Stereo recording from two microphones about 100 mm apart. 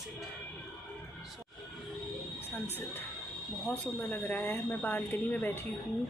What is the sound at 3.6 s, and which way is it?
A woman's voice, 20° left (ahead or behind).